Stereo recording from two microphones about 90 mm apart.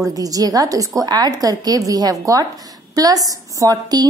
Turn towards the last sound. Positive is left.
turn(degrees=-45)  # may be behind; listen again after turning